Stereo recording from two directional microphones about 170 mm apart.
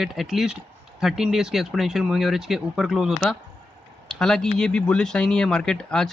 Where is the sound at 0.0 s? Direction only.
Centre (ahead or behind).